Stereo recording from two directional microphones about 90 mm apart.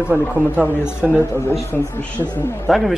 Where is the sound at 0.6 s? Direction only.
25° left (ahead or behind).